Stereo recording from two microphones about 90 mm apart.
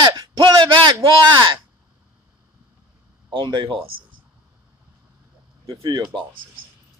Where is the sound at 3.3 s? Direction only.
55° right (ahead or behind).